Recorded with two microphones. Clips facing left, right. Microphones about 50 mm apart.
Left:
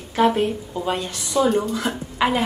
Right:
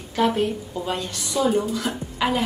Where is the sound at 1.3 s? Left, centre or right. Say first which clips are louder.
Left 3 dB; centre.